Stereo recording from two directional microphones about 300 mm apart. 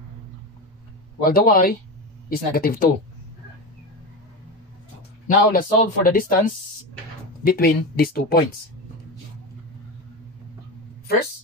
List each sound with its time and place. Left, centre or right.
1.2 s speech: left
5.3 s speech: left